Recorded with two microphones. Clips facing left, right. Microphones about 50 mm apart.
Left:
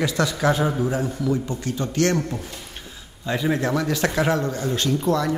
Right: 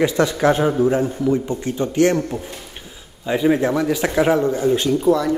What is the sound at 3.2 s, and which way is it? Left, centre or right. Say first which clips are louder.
Speech: right 6 dB; centre.